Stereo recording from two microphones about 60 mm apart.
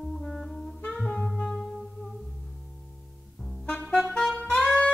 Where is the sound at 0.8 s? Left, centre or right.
Centre.